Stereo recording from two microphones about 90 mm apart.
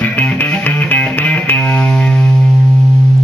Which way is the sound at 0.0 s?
15° left (ahead or behind).